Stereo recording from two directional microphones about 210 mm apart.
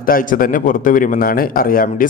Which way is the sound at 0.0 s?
40° left (ahead or behind).